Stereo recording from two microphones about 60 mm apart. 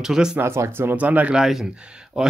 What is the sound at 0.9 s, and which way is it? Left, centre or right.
Speech, right.